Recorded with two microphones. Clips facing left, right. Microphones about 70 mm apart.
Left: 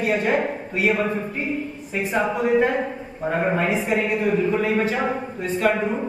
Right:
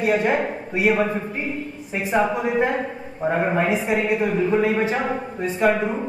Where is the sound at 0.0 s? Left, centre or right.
Centre.